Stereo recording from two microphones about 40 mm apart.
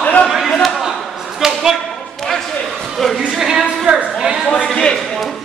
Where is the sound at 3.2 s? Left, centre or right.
Centre.